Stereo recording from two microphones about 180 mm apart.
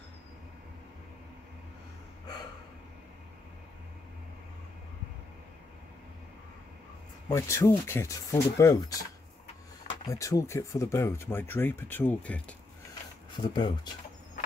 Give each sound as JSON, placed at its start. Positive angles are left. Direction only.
{"t": 7.2, "sound": "speech", "side_deg": 15}
{"t": 10.0, "sound": "speech", "side_deg": 20}
{"t": 13.4, "sound": "speech", "side_deg": 25}